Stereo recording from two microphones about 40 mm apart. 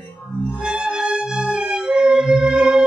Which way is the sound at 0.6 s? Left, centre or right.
Right.